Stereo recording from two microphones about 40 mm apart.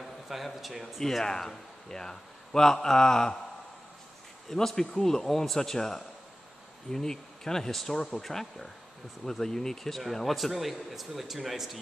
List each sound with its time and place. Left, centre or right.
0.0 s speech: centre
1.0 s a man's voice: centre
4.5 s speech: centre